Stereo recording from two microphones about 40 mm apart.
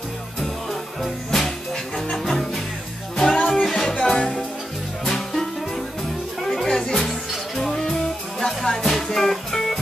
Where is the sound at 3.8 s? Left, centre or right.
Centre.